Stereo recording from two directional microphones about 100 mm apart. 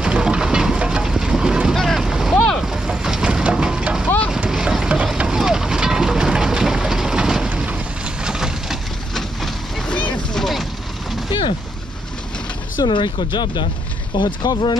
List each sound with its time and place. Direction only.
0.0 s boat: 10° right (ahead or behind)
2.3 s vehicle: 5° left (ahead or behind)
12.8 s speech: 50° left (ahead or behind)